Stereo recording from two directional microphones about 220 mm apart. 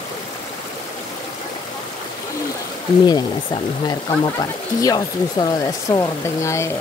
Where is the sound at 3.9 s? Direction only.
20° left (ahead or behind).